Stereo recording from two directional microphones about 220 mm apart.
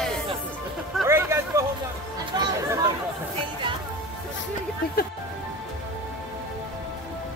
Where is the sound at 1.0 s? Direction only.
10° right (ahead or behind).